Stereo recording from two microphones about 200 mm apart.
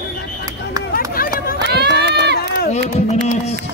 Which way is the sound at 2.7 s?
35° left (ahead or behind).